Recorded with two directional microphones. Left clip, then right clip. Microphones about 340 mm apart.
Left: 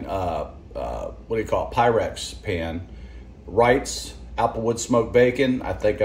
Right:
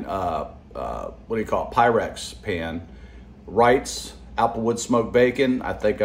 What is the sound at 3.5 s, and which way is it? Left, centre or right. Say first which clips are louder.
Speech: right 1 dB; centre.